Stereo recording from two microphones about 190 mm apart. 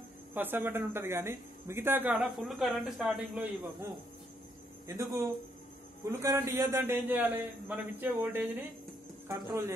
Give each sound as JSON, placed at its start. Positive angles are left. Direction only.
{"t": 0.3, "sound": "speech", "side_deg": -10}
{"t": 4.8, "sound": "speech", "side_deg": -15}